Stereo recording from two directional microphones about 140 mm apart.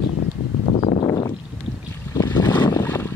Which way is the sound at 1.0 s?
30° left (ahead or behind).